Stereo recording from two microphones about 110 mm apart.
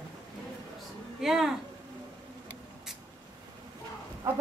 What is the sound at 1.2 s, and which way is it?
Speech, 5° right (ahead or behind).